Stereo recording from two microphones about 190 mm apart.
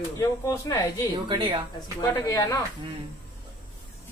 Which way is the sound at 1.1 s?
25° right (ahead or behind).